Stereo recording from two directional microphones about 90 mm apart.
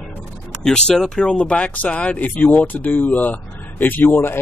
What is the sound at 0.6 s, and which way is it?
Speech, 10° left (ahead or behind).